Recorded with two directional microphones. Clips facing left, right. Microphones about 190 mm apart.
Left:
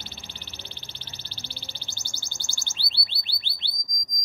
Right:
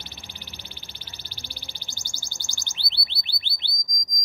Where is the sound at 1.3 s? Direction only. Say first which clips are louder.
Left 1 dB; 15° right (ahead or behind).